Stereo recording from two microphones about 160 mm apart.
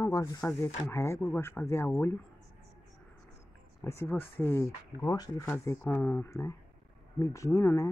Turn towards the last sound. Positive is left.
turn(degrees=20)  # may be behind; listen again after turning